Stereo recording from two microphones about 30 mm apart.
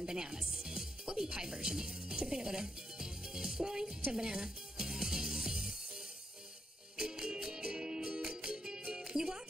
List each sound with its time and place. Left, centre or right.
0.0 s music: right
7.0 s music: right